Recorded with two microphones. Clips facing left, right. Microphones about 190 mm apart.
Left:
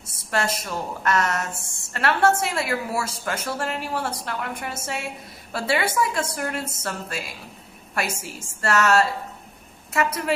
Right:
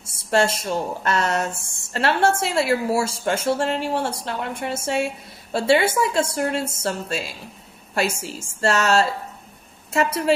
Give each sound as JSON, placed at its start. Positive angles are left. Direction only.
{"t": 0.0, "sound": "a woman's voice", "side_deg": -25}